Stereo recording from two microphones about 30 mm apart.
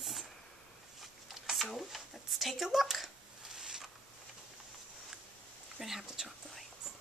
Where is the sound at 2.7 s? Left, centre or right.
Centre.